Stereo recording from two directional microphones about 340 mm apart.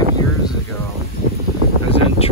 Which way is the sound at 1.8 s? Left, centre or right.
Centre.